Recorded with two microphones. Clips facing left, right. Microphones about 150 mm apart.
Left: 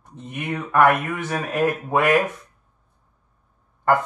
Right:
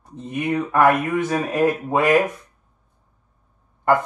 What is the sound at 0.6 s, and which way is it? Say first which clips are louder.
Speech: even; 30° right (ahead or behind).